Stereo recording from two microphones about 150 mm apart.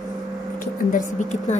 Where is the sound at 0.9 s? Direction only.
55° left (ahead or behind).